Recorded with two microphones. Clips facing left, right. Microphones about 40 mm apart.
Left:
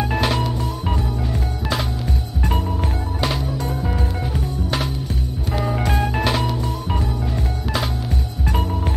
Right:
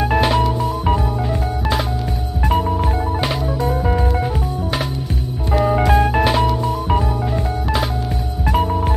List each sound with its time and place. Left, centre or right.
0.0 s music: centre
2.4 s music: centre
5.7 s music: centre
8.5 s music: centre